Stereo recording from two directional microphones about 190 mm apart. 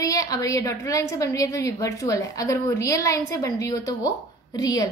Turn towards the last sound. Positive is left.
turn(degrees=20)  # may be behind; listen again after turning